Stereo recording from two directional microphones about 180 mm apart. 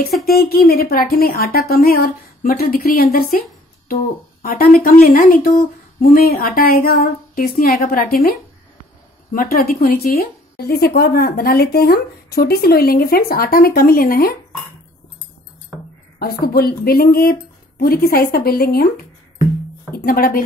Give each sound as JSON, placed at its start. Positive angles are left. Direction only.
{"t": 0.4, "sound": "speech", "side_deg": 60}
{"t": 16.2, "sound": "speech", "side_deg": 60}
{"t": 19.9, "sound": "speech", "side_deg": 55}